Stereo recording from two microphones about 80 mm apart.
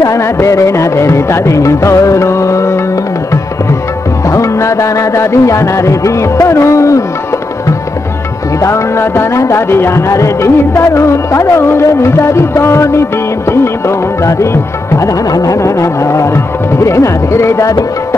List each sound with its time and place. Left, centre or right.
0.0 s music: left
4.3 s music: left
8.5 s music: left